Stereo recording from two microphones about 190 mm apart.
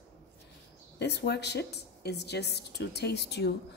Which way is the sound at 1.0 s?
60° left (ahead or behind).